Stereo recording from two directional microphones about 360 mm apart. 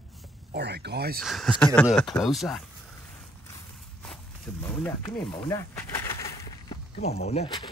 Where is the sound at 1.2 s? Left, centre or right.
Centre.